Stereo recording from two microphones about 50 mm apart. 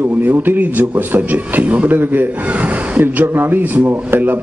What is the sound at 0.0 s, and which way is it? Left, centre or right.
Speech, right.